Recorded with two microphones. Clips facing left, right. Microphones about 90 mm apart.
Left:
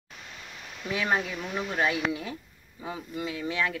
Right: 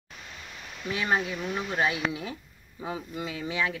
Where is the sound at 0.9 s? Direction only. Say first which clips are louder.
Even; 5° right (ahead or behind).